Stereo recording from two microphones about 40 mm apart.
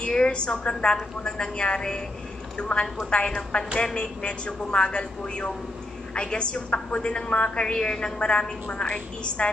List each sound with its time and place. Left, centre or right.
0.0 s a woman's voice: left